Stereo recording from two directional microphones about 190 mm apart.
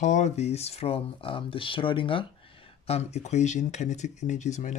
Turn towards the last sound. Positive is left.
turn(degrees=40)  # may be behind; listen again after turning